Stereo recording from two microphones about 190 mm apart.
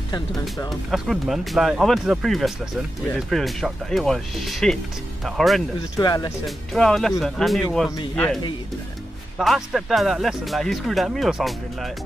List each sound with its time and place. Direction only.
0.7 s speech: centre (ahead or behind)
5.9 s speech: 20° left (ahead or behind)
6.4 s speech: centre (ahead or behind)
9.4 s speech: centre (ahead or behind)